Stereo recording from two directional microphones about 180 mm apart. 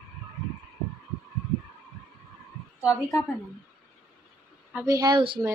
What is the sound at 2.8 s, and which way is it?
Speech, 5° right (ahead or behind).